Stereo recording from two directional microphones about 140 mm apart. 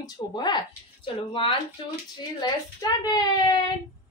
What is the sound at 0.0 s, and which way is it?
Speech, 30° left (ahead or behind).